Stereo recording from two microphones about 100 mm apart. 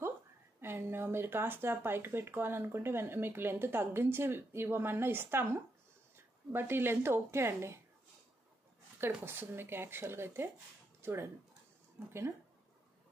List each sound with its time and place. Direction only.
0.6 s speech: 25° right (ahead or behind)
9.0 s speech: 20° right (ahead or behind)
11.0 s a sound: 25° right (ahead or behind)
12.1 s speech: 25° right (ahead or behind)